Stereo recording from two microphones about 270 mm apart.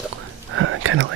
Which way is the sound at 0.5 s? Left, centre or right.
Right.